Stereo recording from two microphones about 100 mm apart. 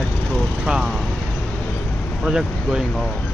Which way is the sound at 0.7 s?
5° right (ahead or behind).